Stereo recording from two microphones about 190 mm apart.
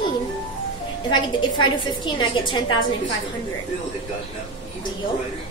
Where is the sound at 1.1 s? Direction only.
25° left (ahead or behind).